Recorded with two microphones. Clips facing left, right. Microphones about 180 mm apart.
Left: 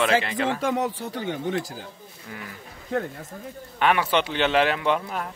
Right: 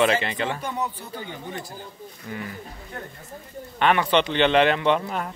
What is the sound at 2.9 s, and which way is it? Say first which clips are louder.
Speech: left 12 dB; 90° left.